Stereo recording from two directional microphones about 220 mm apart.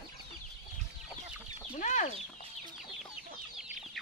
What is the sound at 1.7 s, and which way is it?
Chicken, 35° left (ahead or behind).